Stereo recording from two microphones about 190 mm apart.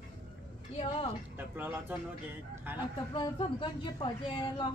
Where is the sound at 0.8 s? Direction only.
30° left (ahead or behind).